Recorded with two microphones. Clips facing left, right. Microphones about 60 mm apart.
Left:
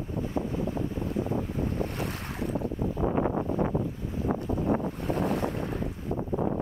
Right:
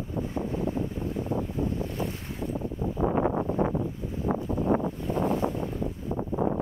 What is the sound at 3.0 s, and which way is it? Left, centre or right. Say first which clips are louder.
Wind noise: right 2 dB; right.